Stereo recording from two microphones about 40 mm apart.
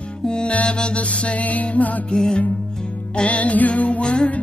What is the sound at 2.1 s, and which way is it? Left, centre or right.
Music, centre.